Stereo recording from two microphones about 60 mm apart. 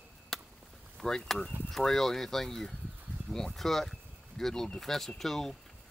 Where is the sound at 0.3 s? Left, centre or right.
Centre.